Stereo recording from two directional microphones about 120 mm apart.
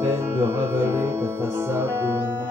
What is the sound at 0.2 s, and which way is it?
Music, 20° right (ahead or behind).